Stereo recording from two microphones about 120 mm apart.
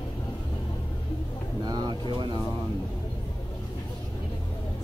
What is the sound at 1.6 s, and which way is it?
Speech, 35° right (ahead or behind).